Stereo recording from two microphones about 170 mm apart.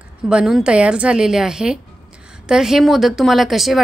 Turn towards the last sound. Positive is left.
turn(degrees=0)  # may be behind; listen again after turning